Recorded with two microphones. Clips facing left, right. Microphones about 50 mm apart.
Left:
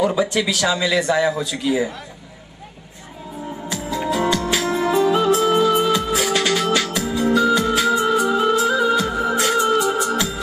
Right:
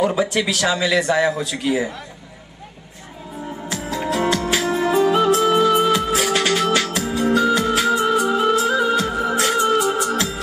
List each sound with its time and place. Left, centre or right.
0.2 s speech: centre
3.7 s music: centre